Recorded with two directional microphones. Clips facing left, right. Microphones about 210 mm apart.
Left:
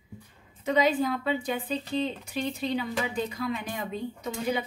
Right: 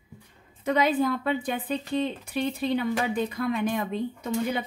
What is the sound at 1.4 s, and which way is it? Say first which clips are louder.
Speech: right 1 dB; 55° right (ahead or behind).